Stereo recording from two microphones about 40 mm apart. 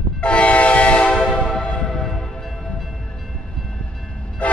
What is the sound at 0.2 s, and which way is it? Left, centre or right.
Train, left.